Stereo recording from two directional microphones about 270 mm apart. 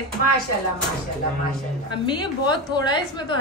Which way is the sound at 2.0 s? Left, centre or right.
Centre.